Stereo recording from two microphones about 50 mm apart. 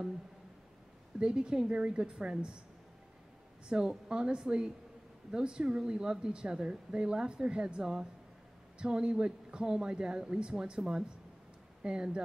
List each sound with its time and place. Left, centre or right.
1.2 s speech: centre
3.6 s speech: centre
11.8 s speech: centre